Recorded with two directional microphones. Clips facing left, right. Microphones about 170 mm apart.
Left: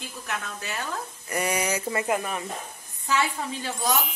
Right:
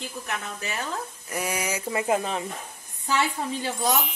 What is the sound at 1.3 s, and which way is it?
Speech, 5° right (ahead or behind).